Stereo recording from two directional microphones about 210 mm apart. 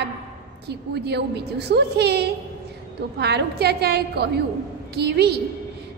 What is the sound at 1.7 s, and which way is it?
A woman's voice, 50° right (ahead or behind).